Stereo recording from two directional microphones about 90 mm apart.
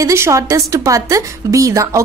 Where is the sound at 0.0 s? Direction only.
30° right (ahead or behind).